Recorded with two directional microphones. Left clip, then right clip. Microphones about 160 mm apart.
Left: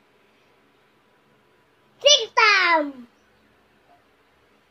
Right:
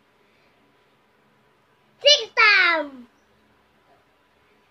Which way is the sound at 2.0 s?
Centre (ahead or behind).